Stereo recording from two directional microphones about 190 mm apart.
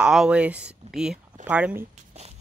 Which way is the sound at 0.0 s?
5° right (ahead or behind).